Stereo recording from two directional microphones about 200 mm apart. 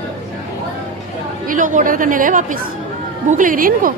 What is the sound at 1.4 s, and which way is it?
A woman's voice, 40° right (ahead or behind).